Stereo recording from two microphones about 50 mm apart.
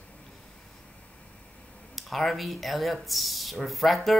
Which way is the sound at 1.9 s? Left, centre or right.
Centre.